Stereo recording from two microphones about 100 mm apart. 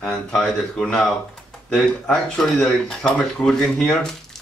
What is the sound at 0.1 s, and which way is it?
Speech, centre (ahead or behind).